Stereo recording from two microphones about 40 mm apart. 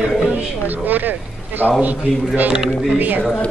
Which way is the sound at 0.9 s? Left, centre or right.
Right.